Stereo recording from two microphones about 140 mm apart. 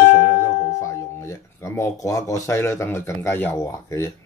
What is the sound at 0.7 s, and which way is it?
Speech, 20° left (ahead or behind).